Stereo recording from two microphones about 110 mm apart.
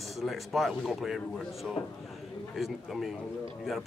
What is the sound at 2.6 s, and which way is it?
Speech, centre (ahead or behind).